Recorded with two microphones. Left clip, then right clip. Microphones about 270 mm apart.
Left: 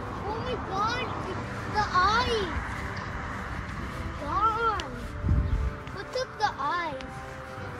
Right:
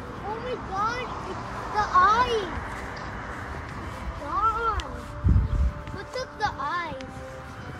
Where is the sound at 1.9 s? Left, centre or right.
Right.